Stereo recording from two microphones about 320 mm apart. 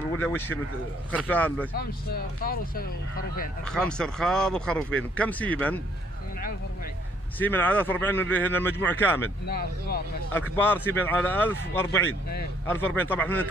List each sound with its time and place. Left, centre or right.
0.2 s speech: centre
1.8 s speech: left
3.7 s speech: centre
7.3 s speech: centre
9.5 s speech: left
10.5 s speech: centre